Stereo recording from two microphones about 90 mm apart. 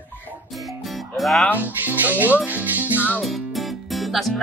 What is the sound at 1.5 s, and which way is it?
Speech, 20° right (ahead or behind).